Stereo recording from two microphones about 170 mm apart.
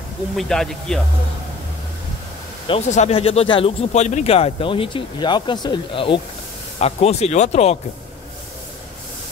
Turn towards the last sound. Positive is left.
turn(degrees=40)  # may be behind; listen again after turning